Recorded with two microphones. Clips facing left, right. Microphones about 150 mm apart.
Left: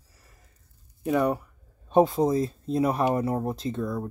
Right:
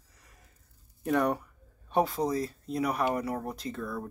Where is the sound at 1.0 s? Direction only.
5° left (ahead or behind).